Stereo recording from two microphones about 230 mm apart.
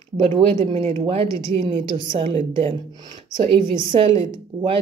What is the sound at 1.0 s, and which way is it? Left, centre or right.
Speech, right.